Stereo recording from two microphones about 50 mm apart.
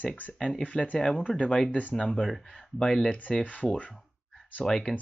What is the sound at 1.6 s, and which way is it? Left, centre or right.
Speech, left.